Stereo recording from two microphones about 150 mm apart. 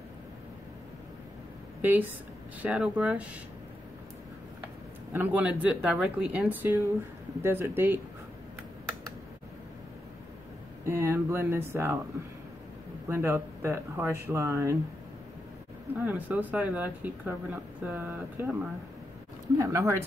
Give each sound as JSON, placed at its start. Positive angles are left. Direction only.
{"t": 1.8, "sound": "speech", "side_deg": -15}
{"t": 5.1, "sound": "speech", "side_deg": -10}
{"t": 10.9, "sound": "speech", "side_deg": -20}
{"t": 13.1, "sound": "speech", "side_deg": -20}
{"t": 16.1, "sound": "speech", "side_deg": -10}